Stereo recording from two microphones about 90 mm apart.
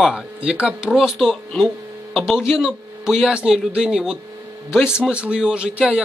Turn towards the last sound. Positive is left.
turn(degrees=-10)  # may be behind; listen again after turning